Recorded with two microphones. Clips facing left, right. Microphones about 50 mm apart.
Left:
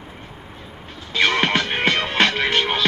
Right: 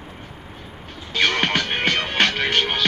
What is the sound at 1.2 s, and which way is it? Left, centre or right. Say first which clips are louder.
Music: left 2 dB; centre.